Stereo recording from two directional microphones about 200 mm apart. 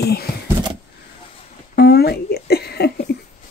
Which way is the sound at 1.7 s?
50° left (ahead or behind).